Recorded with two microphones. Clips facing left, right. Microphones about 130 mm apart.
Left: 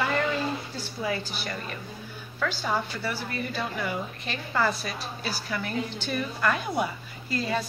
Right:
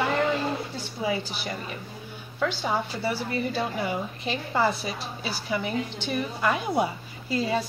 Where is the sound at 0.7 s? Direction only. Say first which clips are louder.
Right 2 dB; 15° right (ahead or behind).